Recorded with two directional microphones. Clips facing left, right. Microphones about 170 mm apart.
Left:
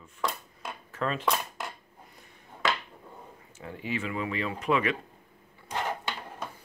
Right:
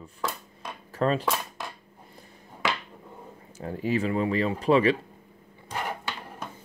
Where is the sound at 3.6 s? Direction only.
40° right (ahead or behind).